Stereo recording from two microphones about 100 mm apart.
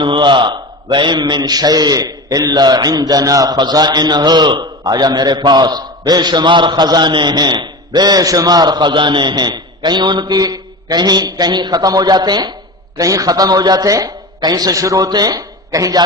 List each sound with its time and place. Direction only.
0.0 s a man's voice: 55° right (ahead or behind); by 16.0 s 35° right (ahead or behind)